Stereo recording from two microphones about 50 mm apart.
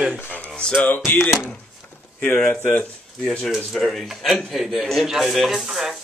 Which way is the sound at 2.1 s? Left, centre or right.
Left.